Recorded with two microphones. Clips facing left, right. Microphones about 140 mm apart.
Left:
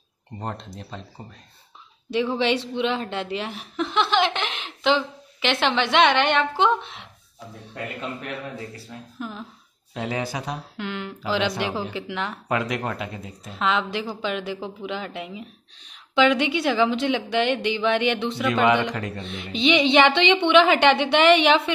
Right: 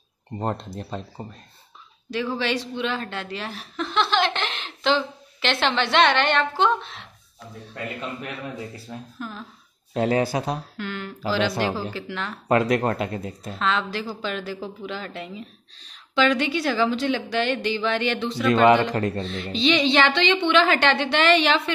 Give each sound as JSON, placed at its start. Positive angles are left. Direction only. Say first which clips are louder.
{"t": 0.4, "sound": "speech", "louder": "right 5 dB", "side_deg": -45}
{"t": 2.1, "sound": "a woman's voice", "louder": "left 3 dB", "side_deg": 25}
{"t": 9.2, "sound": "a woman's voice", "louder": "left 3 dB", "side_deg": 15}
{"t": 9.9, "sound": "speech", "louder": "right 7 dB", "side_deg": -50}
{"t": 10.2, "sound": "speech", "louder": "right 5 dB", "side_deg": -35}
{"t": 10.8, "sound": "a woman's voice", "louder": "even", "side_deg": 15}
{"t": 12.4, "sound": "speech", "louder": "right 7 dB", "side_deg": -40}
{"t": 13.6, "sound": "a woman's voice", "louder": "left 1 dB", "side_deg": 15}